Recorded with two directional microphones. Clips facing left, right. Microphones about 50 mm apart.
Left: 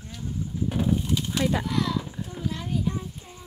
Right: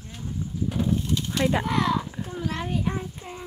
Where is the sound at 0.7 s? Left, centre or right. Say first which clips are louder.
Even; centre.